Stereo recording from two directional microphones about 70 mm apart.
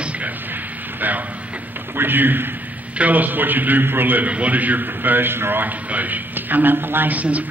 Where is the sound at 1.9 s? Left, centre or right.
Right.